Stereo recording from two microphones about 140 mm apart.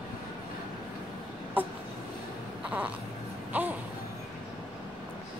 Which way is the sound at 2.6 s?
10° right (ahead or behind).